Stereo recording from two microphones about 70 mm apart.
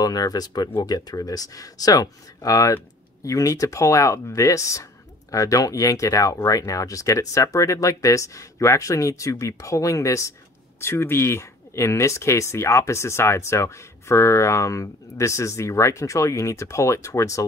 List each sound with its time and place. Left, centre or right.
0.0 s speech: left
10.8 s speech: left